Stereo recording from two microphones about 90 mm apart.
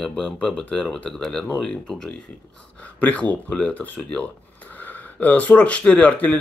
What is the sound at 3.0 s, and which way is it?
Speech, 15° left (ahead or behind).